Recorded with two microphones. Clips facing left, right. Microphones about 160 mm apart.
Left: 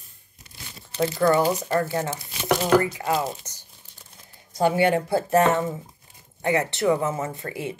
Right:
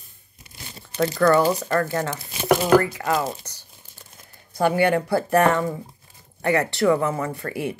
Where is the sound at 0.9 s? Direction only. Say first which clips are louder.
Right 2 dB; 20° left (ahead or behind).